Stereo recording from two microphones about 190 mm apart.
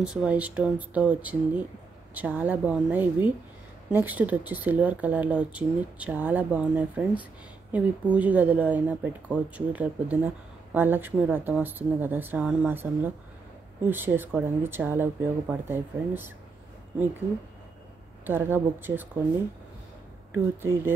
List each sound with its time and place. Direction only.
0.0 s speech: 5° right (ahead or behind)
18.2 s speech: 10° right (ahead or behind)